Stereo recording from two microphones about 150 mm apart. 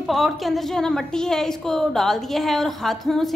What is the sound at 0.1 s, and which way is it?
A woman's voice, centre (ahead or behind).